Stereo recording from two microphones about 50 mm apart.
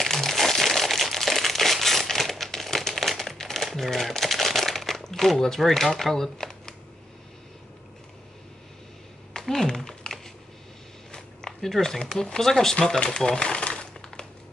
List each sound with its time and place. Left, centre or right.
0.0 s crumpling: centre
5.9 s speech: centre
9.3 s a sound: centre
12.0 s speech: centre
12.8 s crumpling: centre